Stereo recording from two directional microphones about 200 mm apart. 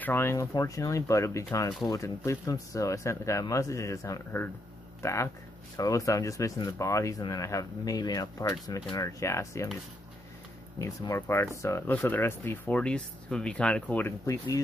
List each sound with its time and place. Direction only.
0.0 s speech: 10° left (ahead or behind)
10.8 s speech: 15° left (ahead or behind)